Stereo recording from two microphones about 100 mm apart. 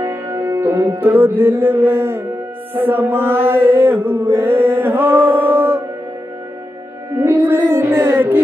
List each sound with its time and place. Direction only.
0.0 s music: 25° right (ahead or behind)
2.7 s chant: 20° right (ahead or behind)
7.2 s chant: 20° right (ahead or behind)